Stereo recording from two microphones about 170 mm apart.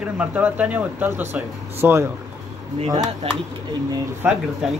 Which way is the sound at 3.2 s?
35° right (ahead or behind).